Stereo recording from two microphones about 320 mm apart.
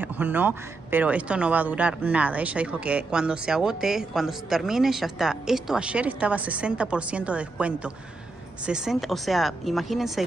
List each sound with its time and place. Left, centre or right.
0.0 s speech: centre